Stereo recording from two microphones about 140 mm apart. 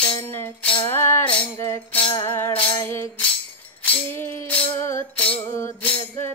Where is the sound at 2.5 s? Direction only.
35° left (ahead or behind).